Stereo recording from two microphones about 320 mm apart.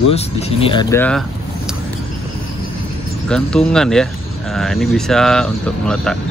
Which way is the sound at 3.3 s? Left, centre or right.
Centre.